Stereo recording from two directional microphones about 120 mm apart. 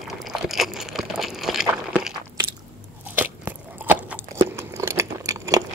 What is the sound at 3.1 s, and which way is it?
Biting, 15° right (ahead or behind).